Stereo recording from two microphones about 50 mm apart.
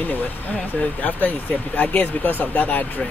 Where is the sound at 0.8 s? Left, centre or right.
Left.